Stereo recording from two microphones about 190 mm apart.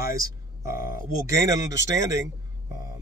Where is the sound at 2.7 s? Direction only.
20° right (ahead or behind).